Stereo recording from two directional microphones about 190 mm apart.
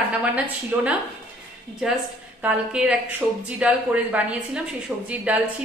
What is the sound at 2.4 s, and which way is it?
A woman's voice, 5° right (ahead or behind).